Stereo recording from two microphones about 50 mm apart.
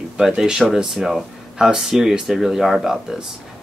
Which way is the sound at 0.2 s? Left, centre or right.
Centre.